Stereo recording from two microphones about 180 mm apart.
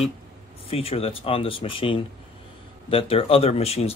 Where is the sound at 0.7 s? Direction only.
30° left (ahead or behind).